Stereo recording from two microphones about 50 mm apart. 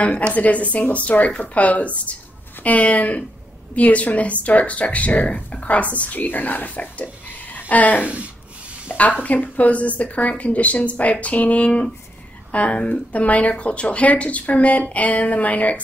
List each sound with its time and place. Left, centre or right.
0.3 s speech: left